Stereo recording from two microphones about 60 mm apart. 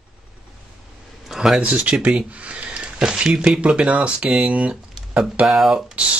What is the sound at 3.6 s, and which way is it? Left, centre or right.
Speech, right.